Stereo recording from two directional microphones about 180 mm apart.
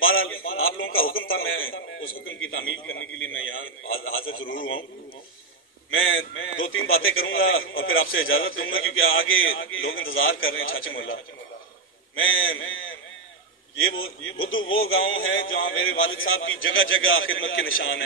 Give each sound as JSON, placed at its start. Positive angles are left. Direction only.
{"t": 0.0, "sound": "a sound", "side_deg": 90}
{"t": 1.1, "sound": "a man's voice", "side_deg": 90}
{"t": 5.9, "sound": "a man's voice", "side_deg": 90}
{"t": 12.2, "sound": "a man's voice", "side_deg": 90}